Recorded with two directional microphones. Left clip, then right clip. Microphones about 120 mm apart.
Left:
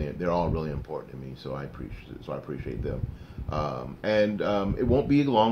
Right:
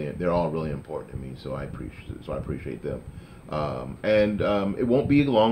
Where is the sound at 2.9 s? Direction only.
20° left (ahead or behind).